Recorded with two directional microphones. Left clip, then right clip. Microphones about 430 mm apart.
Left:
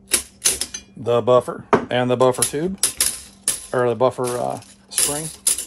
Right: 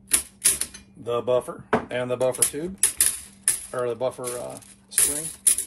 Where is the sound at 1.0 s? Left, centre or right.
Centre.